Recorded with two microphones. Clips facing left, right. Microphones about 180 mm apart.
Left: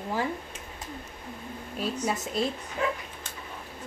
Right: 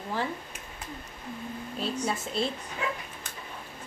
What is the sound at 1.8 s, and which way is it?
Speech, 10° left (ahead or behind).